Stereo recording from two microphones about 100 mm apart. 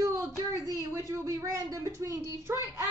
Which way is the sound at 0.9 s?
30° right (ahead or behind).